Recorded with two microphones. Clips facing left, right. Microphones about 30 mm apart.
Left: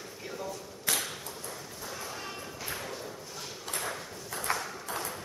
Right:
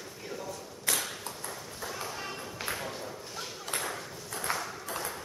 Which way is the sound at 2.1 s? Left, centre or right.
Centre.